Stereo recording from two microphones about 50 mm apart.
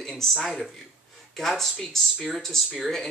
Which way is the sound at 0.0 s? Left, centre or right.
Centre.